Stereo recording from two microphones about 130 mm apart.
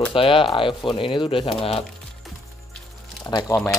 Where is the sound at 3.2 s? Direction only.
30° left (ahead or behind).